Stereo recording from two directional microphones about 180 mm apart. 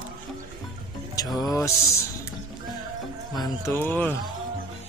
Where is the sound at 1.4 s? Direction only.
20° left (ahead or behind).